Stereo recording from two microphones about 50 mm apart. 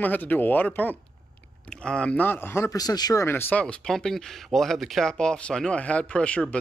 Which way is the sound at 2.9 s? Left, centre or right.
Left.